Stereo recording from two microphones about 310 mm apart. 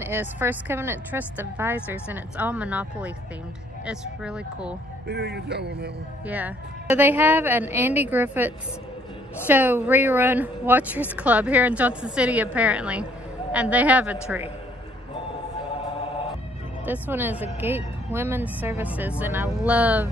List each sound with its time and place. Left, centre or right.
0.0 s a woman's voice: centre
5.0 s speech: right
6.2 s a woman's voice: centre
16.8 s a woman's voice: centre